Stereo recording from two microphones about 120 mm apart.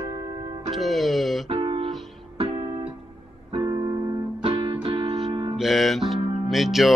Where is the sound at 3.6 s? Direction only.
30° right (ahead or behind).